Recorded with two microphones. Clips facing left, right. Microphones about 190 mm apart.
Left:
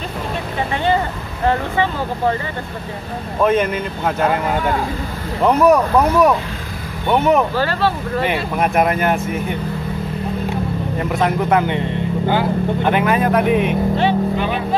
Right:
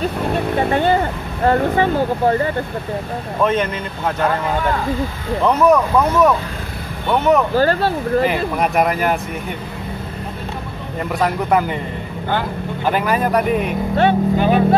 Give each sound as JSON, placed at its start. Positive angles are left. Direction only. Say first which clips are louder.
{"t": 0.7, "sound": "speech", "louder": "even", "side_deg": -50}
{"t": 3.4, "sound": "speech", "louder": "left 3 dB", "side_deg": 5}
{"t": 5.4, "sound": "speech", "louder": "left 1 dB", "side_deg": 10}
{"t": 7.5, "sound": "speech", "louder": "right 3 dB", "side_deg": -45}
{"t": 8.3, "sound": "speech", "louder": "even", "side_deg": 0}
{"t": 12.8, "sound": "speech", "louder": "even", "side_deg": 0}
{"t": 13.9, "sound": "speech", "louder": "right 2 dB", "side_deg": -45}